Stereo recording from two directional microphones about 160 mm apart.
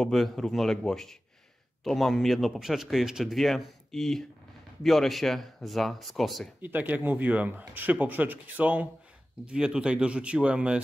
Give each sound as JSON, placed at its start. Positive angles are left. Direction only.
{"t": 0.0, "sound": "a man's voice", "side_deg": 0}
{"t": 6.6, "sound": "speech", "side_deg": -10}